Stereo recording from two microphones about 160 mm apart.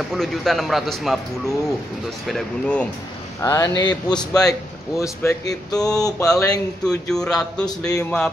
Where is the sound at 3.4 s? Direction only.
20° left (ahead or behind).